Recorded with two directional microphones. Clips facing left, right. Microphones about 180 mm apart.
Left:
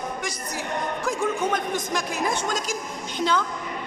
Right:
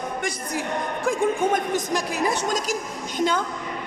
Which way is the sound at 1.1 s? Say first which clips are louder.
Right 4 dB; 40° right (ahead or behind).